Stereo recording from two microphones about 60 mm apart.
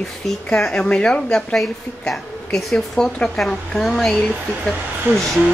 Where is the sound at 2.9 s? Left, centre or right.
Centre.